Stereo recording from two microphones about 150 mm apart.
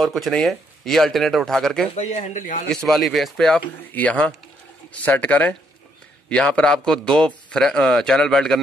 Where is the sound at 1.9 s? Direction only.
50° left (ahead or behind).